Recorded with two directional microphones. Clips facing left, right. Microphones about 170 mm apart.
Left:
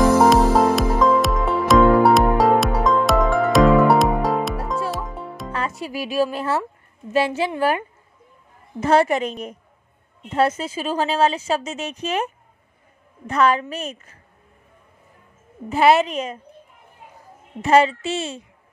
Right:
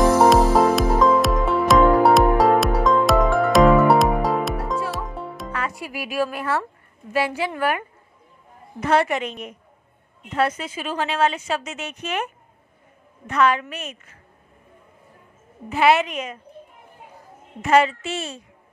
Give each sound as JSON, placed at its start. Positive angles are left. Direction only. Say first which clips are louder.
{"t": 0.2, "sound": "music", "louder": "even", "side_deg": 0}
{"t": 5.5, "sound": "a woman's voice", "louder": "left 4 dB", "side_deg": 30}
{"t": 13.3, "sound": "speech", "louder": "left 1 dB", "side_deg": 35}
{"t": 15.7, "sound": "speech", "louder": "left 2 dB", "side_deg": 35}
{"t": 17.6, "sound": "a woman's voice", "louder": "left 2 dB", "side_deg": 30}